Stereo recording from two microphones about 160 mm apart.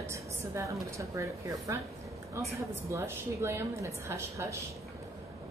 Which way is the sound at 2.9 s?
15° right (ahead or behind).